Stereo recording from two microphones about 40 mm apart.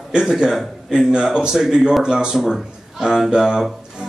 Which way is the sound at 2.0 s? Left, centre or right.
Centre.